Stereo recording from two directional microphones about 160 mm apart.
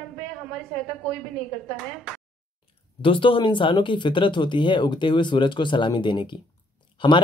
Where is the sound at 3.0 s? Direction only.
35° left (ahead or behind).